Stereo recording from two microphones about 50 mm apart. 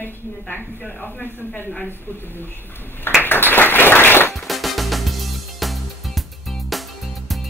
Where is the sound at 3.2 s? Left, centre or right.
Left.